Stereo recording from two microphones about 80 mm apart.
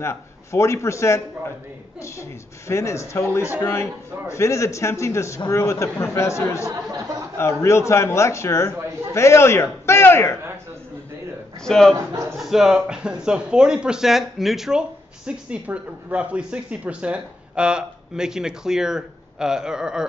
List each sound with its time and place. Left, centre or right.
0.0 s a man's voice: left
11.6 s a man's voice: centre
11.9 s a man's voice: right
12.4 s speech: centre